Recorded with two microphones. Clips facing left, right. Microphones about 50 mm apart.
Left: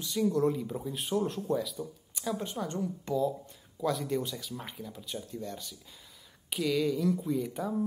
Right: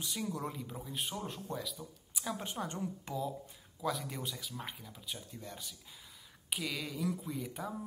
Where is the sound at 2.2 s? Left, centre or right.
Centre.